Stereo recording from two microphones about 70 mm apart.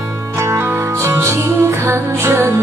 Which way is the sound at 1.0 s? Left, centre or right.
Right.